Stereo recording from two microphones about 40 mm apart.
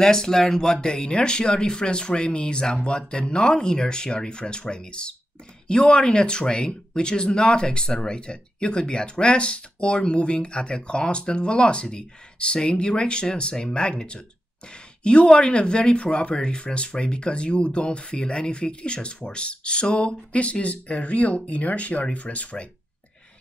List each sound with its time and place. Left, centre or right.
0.0 s speech: centre; by 22.7 s left